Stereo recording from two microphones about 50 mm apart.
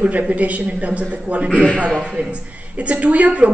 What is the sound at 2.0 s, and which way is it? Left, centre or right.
A woman's voice, right.